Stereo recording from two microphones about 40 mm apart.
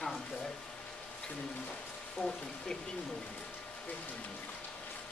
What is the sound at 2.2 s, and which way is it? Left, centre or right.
Speech, left.